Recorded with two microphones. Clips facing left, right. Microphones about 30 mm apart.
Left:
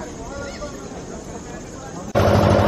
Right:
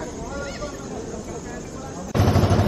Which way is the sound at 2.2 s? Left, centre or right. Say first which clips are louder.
Left 5 dB; centre.